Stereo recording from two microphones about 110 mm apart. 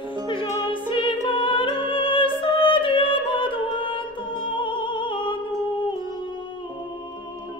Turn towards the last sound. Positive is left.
turn(degrees=50)  # may be behind; listen again after turning